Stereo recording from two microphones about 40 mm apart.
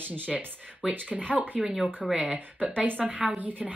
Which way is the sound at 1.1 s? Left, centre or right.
Right.